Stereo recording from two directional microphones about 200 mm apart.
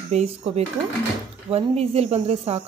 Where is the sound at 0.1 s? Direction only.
30° right (ahead or behind).